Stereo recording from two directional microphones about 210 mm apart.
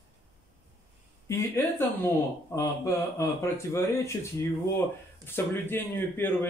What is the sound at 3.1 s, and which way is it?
A man's voice, 15° left (ahead or behind).